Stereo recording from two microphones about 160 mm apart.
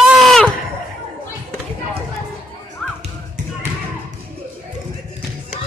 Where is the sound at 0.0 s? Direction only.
Centre (ahead or behind).